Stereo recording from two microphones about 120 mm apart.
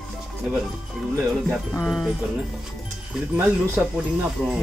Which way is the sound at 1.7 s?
5° left (ahead or behind).